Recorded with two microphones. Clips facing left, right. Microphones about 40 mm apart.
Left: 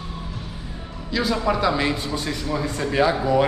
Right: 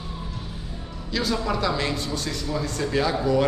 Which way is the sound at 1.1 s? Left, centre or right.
Centre.